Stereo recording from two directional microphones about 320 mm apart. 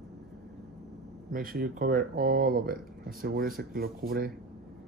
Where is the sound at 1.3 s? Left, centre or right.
Right.